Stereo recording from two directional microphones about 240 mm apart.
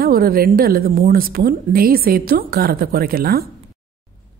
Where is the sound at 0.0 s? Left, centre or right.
Right.